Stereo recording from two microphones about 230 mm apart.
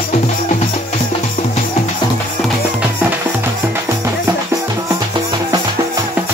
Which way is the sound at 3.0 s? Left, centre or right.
Centre.